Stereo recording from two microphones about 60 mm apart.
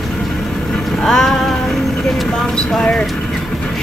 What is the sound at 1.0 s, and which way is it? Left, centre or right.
Music, centre.